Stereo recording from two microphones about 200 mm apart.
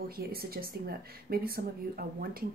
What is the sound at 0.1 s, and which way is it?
Speech, 50° right (ahead or behind).